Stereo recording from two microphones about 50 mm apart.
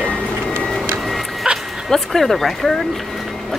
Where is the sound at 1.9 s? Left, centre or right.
Centre.